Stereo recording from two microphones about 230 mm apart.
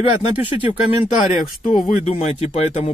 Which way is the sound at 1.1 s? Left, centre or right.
Left.